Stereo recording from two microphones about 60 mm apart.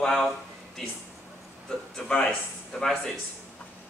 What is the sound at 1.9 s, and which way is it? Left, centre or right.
Speech, centre.